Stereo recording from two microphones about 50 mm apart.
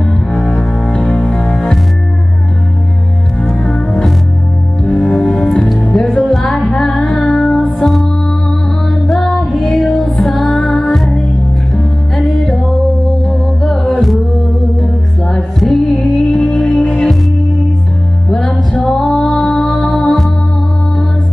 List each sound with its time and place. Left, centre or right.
0.9 s music: centre
3.3 s music: centre
6.7 s female singing: centre
7.6 s music: centre
13.6 s music: centre
15.2 s music: centre
18.3 s music: centre